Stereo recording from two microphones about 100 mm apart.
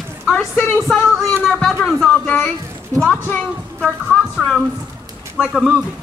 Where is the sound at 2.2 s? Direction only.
20° left (ahead or behind).